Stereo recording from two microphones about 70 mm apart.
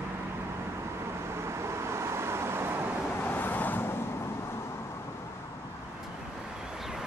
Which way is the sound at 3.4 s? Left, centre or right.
Left.